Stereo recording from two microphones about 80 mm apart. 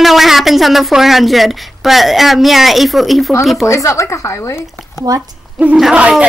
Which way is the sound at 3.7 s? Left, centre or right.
Left.